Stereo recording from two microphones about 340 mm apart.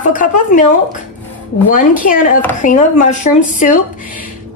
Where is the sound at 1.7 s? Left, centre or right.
Left.